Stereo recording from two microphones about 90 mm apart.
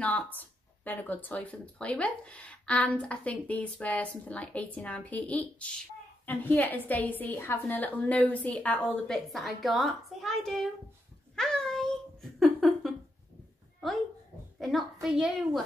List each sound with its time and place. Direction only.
0.0 s speech: 15° left (ahead or behind); by 10.7 s centre (ahead or behind)
11.3 s a sound: 5° left (ahead or behind)
14.6 s a child's voice: centre (ahead or behind)